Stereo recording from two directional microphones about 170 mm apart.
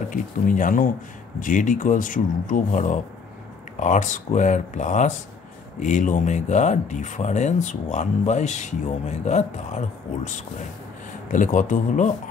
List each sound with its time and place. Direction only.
0.1 s speech: 55° left (ahead or behind)